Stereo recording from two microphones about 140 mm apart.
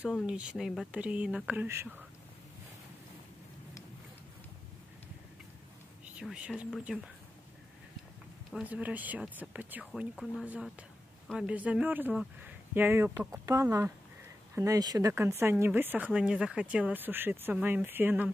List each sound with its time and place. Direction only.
0.0 s speech: 5° right (ahead or behind)
6.1 s speech: 5° right (ahead or behind)
8.5 s speech: 5° right (ahead or behind)
10.1 s speech: centre (ahead or behind)
10.4 s speech: 10° right (ahead or behind)